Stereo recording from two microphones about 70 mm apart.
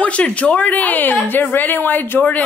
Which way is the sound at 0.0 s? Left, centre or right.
Centre.